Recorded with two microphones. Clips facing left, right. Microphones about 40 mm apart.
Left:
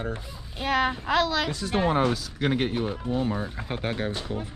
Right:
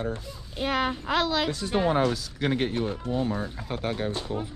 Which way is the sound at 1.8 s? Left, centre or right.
Centre.